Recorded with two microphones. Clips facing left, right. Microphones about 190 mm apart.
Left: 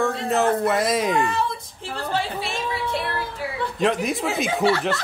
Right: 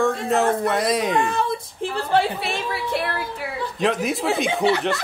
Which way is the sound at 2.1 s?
60° right (ahead or behind).